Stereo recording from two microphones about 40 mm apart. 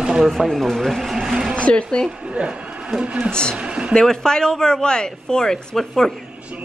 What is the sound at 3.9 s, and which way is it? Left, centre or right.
Speech, centre.